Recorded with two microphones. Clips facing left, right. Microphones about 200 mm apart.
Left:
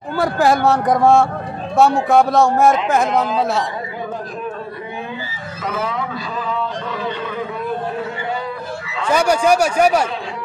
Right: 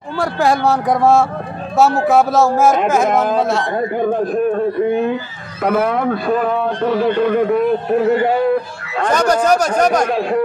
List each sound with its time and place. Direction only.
0.2 s a man's voice: centre (ahead or behind)
4.0 s a man's voice: 55° right (ahead or behind)
9.1 s speech: 10° left (ahead or behind)
10.0 s a man's voice: 55° right (ahead or behind)